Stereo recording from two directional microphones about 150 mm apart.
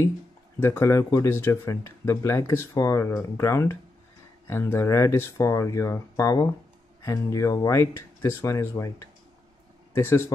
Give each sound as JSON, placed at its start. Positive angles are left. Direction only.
{"t": 0.6, "sound": "speech", "side_deg": 15}